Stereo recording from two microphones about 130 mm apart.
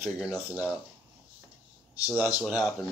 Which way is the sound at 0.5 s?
10° right (ahead or behind).